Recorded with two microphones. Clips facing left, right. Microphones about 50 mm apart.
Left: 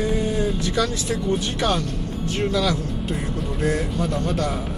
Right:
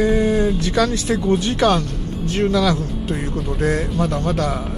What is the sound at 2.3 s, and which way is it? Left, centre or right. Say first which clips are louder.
Speech: right 5 dB; right.